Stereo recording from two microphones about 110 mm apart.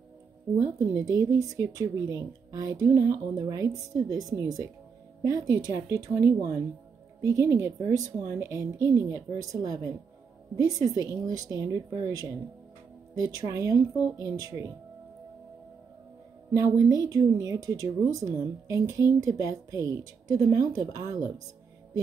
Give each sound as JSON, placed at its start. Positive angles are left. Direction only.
{"t": 0.6, "sound": "a woman's voice", "side_deg": -30}
{"t": 16.5, "sound": "a woman's voice", "side_deg": -30}